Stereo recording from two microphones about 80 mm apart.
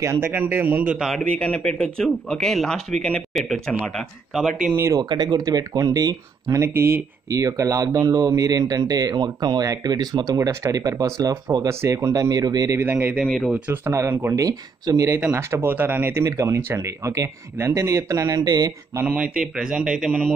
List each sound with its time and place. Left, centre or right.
0.0 s a man's voice: right
0.9 s speech: centre
1.4 s speech: centre
4.9 s speech: right
5.7 s speech: right
12.9 s speech: centre
13.7 s speech: right
14.3 s speech: right
15.2 s speech: right
19.0 s speech: centre